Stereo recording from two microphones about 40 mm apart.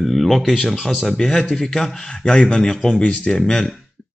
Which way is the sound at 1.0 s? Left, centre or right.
Centre.